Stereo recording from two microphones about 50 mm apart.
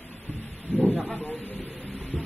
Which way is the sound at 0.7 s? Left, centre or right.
Left.